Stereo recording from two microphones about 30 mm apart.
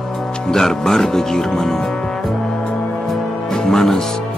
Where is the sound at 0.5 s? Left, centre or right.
Centre.